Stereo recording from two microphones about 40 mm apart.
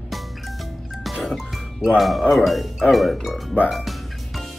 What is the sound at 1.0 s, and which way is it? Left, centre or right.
Speech, centre.